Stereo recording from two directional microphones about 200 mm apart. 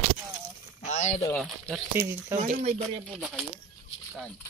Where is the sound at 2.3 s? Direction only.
35° right (ahead or behind).